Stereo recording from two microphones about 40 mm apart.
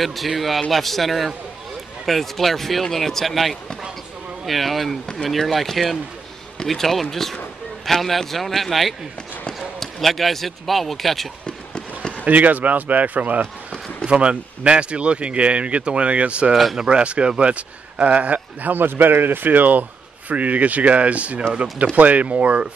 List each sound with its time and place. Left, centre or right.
0.0 s speech: centre
11.4 s a sound: left
12.3 s speech: right
14.1 s speech: right